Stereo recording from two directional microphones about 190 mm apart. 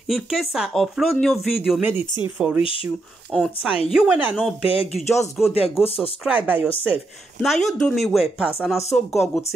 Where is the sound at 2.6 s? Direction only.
30° left (ahead or behind).